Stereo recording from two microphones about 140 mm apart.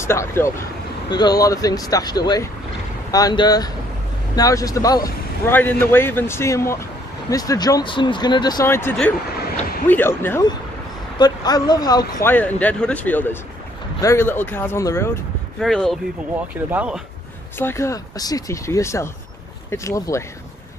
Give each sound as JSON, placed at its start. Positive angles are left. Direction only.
{"t": 0.0, "sound": "a man's voice", "side_deg": 20}
{"t": 5.5, "sound": "a man's voice", "side_deg": 15}
{"t": 8.6, "sound": "speech", "side_deg": 15}
{"t": 11.1, "sound": "a man's voice", "side_deg": 30}
{"t": 12.2, "sound": "speech", "side_deg": 15}
{"t": 15.6, "sound": "speech", "side_deg": 0}
{"t": 17.6, "sound": "a man's voice", "side_deg": 20}